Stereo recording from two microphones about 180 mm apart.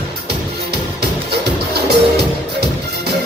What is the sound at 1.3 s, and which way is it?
Music, 65° right (ahead or behind).